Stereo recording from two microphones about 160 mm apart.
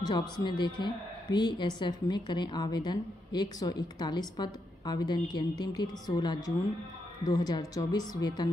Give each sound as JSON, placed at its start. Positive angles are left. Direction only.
{"t": 0.0, "sound": "a woman's voice", "side_deg": 25}